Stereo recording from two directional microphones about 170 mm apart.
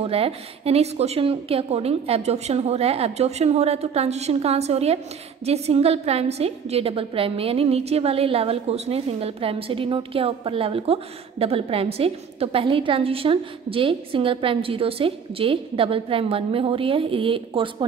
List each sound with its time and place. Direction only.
0.0 s a woman's voice: 35° right (ahead or behind)